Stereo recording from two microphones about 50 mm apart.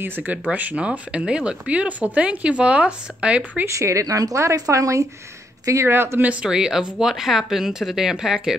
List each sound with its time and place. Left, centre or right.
0.0 s speech: right
0.7 s speech: right
3.6 s speech: right
5.9 s speech: right
6.4 s speech: centre